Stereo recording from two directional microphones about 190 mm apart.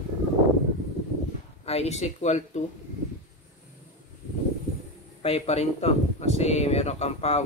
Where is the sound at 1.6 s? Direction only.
35° left (ahead or behind).